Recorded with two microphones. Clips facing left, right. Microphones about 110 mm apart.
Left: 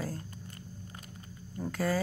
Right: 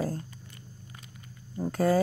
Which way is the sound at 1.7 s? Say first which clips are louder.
Right 7 dB; 40° right (ahead or behind).